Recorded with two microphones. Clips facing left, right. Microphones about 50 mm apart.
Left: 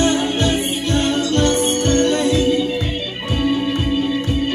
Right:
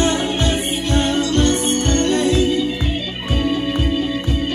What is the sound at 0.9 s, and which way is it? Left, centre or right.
Music, right.